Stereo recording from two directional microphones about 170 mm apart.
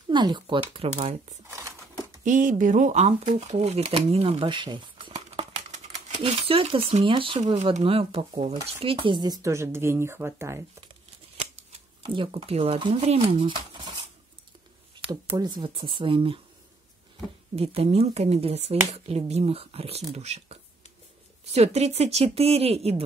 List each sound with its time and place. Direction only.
0.1 s speech: 25° right (ahead or behind)
2.2 s speech: 50° right (ahead or behind); by 10.6 s 15° right (ahead or behind)
12.1 s speech: 30° right (ahead or behind)
15.2 s speech: 25° right (ahead or behind)
17.6 s speech: 35° right (ahead or behind)